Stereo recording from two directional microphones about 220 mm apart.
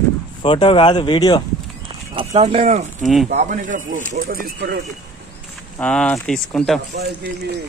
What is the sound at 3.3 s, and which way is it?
Speech, 35° right (ahead or behind).